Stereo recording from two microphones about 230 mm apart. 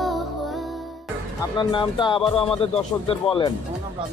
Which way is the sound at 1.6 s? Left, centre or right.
Centre.